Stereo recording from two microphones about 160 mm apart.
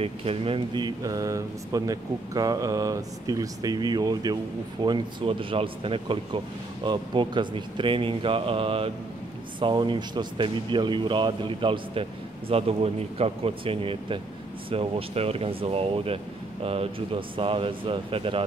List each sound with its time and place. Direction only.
0.0 s speech: 35° right (ahead or behind)